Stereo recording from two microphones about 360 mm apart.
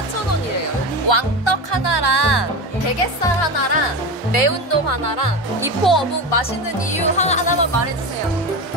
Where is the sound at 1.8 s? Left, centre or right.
Left.